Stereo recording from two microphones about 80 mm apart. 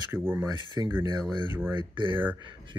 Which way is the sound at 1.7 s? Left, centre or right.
Right.